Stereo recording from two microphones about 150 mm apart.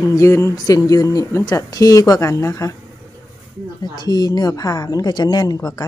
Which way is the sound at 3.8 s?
25° left (ahead or behind).